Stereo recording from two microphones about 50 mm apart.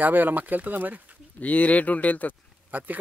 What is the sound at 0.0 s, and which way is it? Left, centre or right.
Speech, right.